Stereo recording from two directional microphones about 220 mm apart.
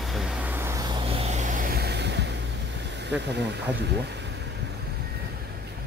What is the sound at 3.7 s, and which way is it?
Vehicle, 50° right (ahead or behind).